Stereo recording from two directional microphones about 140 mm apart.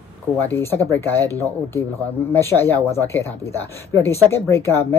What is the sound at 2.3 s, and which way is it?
Speech, 15° left (ahead or behind).